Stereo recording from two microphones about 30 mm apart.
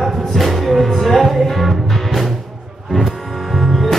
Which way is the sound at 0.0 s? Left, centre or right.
Centre.